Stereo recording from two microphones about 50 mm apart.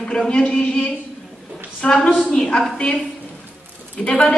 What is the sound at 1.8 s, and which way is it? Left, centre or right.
A woman's voice, centre.